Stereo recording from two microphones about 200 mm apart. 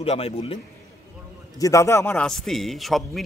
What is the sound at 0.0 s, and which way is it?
Speech, 30° left (ahead or behind).